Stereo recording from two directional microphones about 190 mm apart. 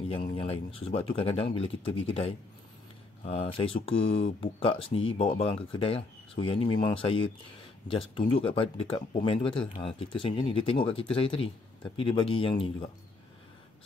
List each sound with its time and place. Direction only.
0.1 s speech: 25° left (ahead or behind)